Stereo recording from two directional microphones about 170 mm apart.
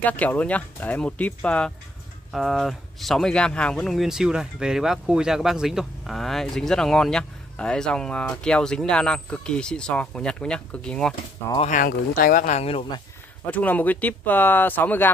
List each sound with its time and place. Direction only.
0.0 s speech: 10° left (ahead or behind)
11.7 s speech: 55° left (ahead or behind); by 13.0 s 35° left (ahead or behind)
13.5 s speech: 10° left (ahead or behind)